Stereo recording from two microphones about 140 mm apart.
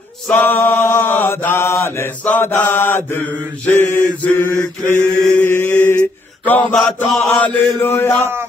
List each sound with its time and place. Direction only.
0.3 s mantra: 10° left (ahead or behind)
5.4 s chant: 15° left (ahead or behind)
6.4 s mantra: 15° left (ahead or behind)
6.7 s mantra: centre (ahead or behind)
7.2 s speech: 10° left (ahead or behind)